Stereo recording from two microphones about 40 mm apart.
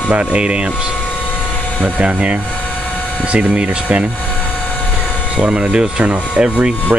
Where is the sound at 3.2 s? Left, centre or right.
Right.